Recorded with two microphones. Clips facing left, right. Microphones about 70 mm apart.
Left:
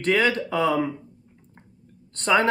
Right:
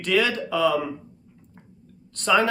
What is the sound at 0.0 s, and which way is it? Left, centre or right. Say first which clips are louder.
Speech: left 1 dB; left.